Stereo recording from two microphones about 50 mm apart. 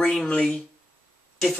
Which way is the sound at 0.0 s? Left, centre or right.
Centre.